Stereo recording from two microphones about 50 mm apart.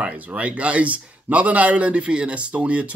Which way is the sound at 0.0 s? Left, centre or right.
Right.